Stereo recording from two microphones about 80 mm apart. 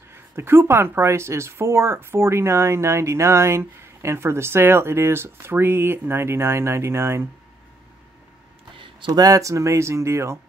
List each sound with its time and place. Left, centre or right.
0.4 s speech: right
8.7 s speech: right